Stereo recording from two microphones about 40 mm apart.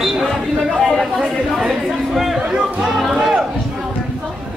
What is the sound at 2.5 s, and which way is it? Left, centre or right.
Music, centre.